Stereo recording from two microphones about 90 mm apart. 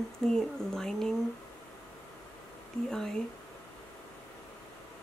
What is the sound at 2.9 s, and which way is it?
Speech, 5° left (ahead or behind).